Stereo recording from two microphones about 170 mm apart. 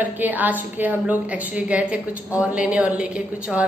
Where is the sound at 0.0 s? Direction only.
10° right (ahead or behind).